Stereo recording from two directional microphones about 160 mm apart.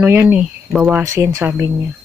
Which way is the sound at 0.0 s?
10° right (ahead or behind).